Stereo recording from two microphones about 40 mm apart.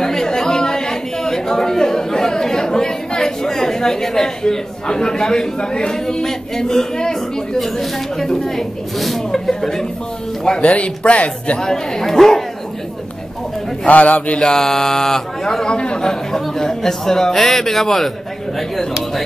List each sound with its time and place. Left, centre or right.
0.0 s chatter: centre
8.2 s a man's voice: centre
9.5 s a man's voice: centre
10.6 s speech: left
11.6 s a man's voice: centre
13.8 s speech: left
14.4 s a man's voice: centre